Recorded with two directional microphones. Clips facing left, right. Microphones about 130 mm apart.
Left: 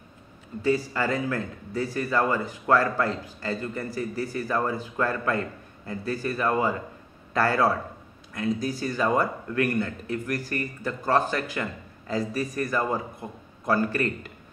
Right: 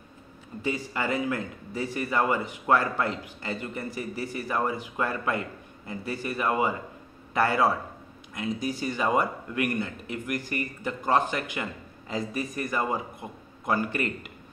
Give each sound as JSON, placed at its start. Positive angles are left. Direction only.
{"t": 0.6, "sound": "speech", "side_deg": -20}